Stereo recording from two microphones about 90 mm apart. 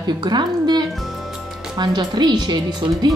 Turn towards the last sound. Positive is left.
turn(degrees=-55)  # may be behind; listen again after turning